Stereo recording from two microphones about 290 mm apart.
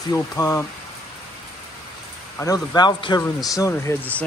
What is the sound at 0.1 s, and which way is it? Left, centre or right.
Speech, centre.